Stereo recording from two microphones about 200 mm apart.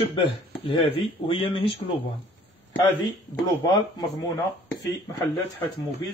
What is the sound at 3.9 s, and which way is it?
Speech, 20° left (ahead or behind).